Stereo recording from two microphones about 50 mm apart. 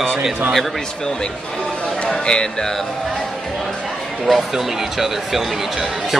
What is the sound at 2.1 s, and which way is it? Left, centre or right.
Speech, centre.